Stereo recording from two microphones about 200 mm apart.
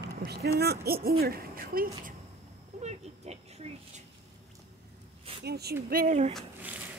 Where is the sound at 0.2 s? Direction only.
50° right (ahead or behind).